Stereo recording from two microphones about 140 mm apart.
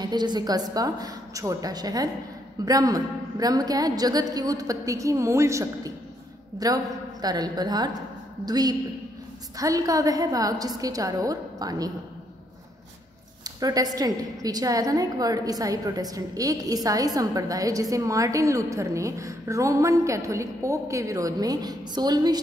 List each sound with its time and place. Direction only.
0.0 s a woman's voice: 30° right (ahead or behind)
13.4 s a woman's voice: 25° right (ahead or behind)